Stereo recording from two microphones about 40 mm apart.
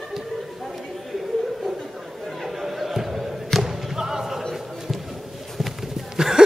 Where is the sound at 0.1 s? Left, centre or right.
Centre.